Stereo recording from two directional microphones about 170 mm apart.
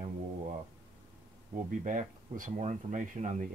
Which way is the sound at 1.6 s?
50° right (ahead or behind).